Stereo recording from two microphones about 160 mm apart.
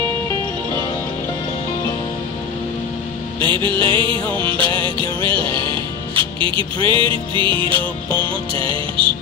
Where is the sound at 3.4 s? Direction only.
30° right (ahead or behind).